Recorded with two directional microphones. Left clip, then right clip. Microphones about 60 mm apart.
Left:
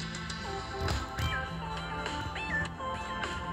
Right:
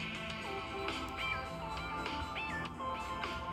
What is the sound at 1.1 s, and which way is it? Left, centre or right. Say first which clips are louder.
Music: left 3 dB; left.